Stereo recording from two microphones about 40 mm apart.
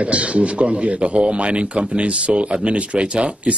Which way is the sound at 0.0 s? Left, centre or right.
Right.